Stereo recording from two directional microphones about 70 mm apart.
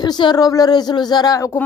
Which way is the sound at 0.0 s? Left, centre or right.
Left.